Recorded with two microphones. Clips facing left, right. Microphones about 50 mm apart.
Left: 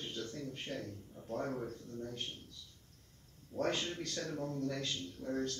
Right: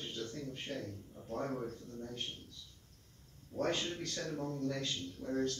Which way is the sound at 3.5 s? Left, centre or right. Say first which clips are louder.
Even; centre.